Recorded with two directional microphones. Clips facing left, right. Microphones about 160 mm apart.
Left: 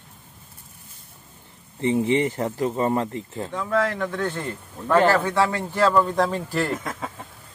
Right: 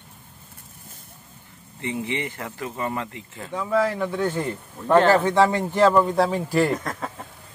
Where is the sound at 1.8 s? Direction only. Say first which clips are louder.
Left 8 dB; 40° left (ahead or behind).